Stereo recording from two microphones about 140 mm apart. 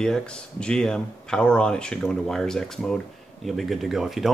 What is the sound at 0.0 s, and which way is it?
Speech, 5° left (ahead or behind).